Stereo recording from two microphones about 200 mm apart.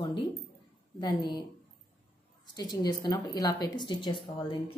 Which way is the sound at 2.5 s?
20° left (ahead or behind).